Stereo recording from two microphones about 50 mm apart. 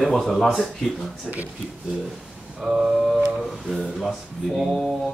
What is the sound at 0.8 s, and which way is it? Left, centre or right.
Speech, centre.